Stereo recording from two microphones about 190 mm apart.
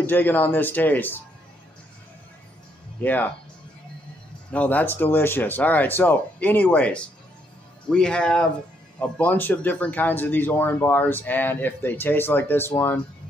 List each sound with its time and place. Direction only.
0.0 s speech: 10° left (ahead or behind)
3.0 s speech: 10° left (ahead or behind)
4.5 s speech: 10° left (ahead or behind)